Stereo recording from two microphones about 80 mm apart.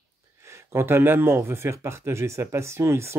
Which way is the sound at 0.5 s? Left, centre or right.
Right.